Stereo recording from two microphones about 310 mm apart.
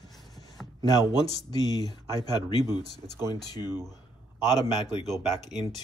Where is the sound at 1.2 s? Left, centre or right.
Centre.